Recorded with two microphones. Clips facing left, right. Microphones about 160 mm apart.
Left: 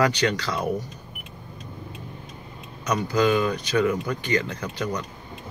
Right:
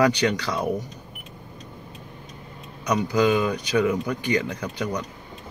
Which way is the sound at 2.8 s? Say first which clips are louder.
Right 1 dB; 15° right (ahead or behind).